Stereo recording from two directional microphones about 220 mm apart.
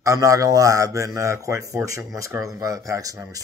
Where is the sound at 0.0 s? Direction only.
15° right (ahead or behind).